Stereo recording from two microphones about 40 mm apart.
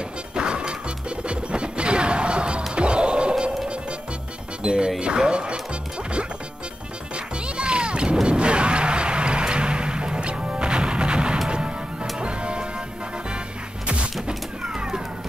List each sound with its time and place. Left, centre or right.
0.3 s smash: right
0.8 s music: right
4.6 s speech: centre
7.4 s music: right
14.2 s a sound: centre